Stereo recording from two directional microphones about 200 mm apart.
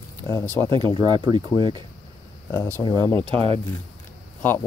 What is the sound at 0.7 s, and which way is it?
Speech, 25° right (ahead or behind).